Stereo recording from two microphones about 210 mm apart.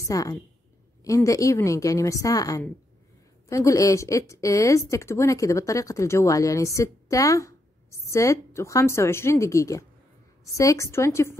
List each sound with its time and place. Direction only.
0.1 s speech: 15° left (ahead or behind)